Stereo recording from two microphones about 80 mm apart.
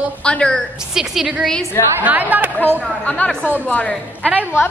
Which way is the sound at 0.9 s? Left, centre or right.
Centre.